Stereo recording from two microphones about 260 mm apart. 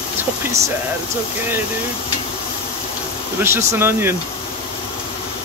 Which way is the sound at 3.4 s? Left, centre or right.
Centre.